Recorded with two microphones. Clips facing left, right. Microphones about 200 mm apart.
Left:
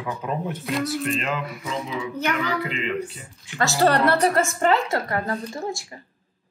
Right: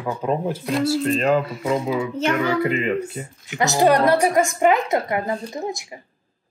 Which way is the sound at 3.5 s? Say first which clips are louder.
Right 3 dB; 20° right (ahead or behind).